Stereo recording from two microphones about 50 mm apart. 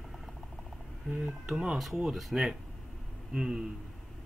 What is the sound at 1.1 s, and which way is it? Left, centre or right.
Speech, centre.